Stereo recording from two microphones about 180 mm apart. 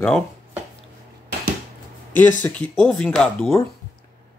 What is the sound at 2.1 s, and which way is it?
Speech, 10° left (ahead or behind).